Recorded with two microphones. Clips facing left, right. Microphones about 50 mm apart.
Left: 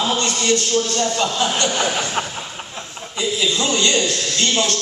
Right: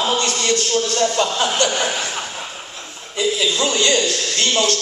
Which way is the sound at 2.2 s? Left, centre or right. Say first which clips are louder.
Left 5 dB; left.